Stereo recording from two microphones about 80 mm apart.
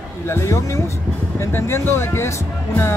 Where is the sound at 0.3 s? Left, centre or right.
Left.